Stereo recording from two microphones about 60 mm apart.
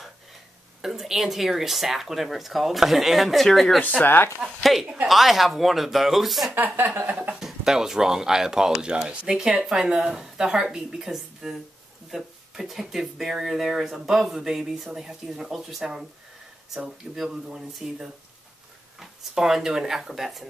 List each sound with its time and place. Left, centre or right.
0.8 s speech: centre
4.0 s speech: left
4.4 s speech: centre
6.5 s speech: right
6.9 s a sound: centre
7.3 s speech: centre
17.1 s speech: centre